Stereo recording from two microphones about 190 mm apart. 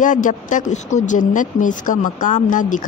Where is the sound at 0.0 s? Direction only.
40° left (ahead or behind).